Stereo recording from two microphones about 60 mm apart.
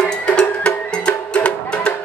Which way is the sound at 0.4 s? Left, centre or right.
Centre.